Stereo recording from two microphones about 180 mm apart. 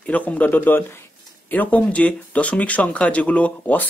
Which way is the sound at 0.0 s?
10° left (ahead or behind).